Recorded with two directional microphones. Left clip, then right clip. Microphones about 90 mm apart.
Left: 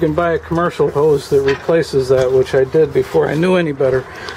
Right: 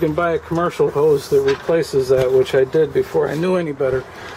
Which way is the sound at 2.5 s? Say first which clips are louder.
Left 2 dB; 10° right (ahead or behind).